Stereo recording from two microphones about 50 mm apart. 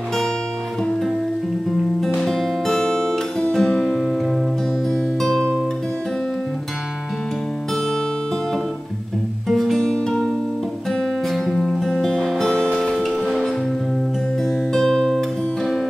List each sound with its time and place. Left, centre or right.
1.7 s guitar: centre
4.8 s music: centre
9.5 s music: centre
9.8 s music: centre
14.4 s guitar: centre